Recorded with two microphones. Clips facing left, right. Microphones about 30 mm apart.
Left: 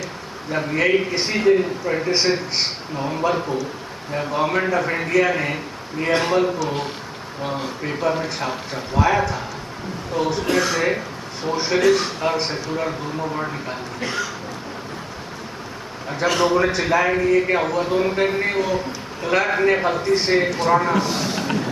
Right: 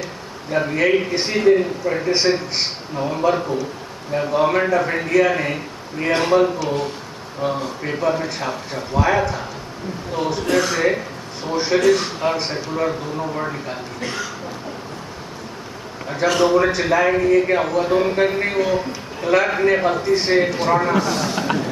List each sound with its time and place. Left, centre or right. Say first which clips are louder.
0.5 s a man's voice: right 1 dB; centre
10.4 s a man's voice: right 4 dB; centre
14.0 s a man's voice: left 2 dB; centre
16.1 s a man's voice: right 2 dB; centre
21.0 s speech: right 2 dB; centre